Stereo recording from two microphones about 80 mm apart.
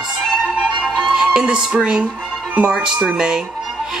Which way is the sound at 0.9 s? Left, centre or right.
Centre.